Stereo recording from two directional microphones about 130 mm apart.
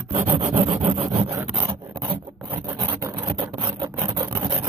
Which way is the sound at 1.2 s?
25° right (ahead or behind).